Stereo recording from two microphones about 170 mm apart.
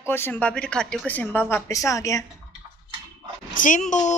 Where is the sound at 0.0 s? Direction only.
15° left (ahead or behind).